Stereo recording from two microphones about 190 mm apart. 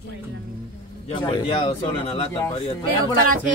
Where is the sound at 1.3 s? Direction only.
30° left (ahead or behind).